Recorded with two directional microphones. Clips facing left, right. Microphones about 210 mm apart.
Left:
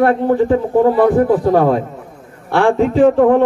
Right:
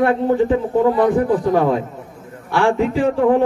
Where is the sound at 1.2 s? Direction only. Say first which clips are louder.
Left 4 dB; 55° left (ahead or behind).